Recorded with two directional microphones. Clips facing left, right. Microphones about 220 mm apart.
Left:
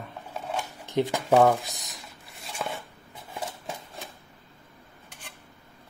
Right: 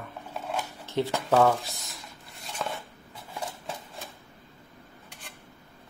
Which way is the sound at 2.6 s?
10° left (ahead or behind).